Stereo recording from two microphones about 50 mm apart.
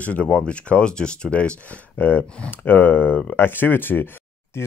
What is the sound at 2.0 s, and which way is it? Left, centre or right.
Speech, left.